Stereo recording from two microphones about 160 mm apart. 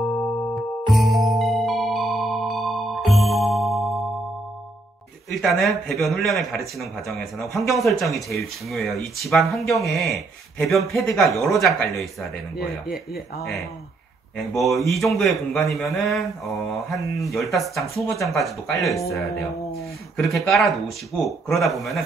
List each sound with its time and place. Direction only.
0.6 s music: centre (ahead or behind)
5.3 s speech: centre (ahead or behind)
13.1 s speech: 80° left
14.6 s speech: centre (ahead or behind)